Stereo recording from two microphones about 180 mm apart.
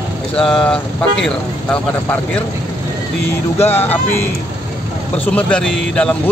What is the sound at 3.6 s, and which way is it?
A man's voice, 10° left (ahead or behind).